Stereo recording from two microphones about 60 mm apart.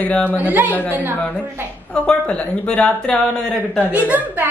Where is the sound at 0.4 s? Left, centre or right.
Right.